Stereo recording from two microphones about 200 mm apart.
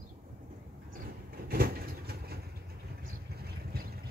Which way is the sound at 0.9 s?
50° right (ahead or behind).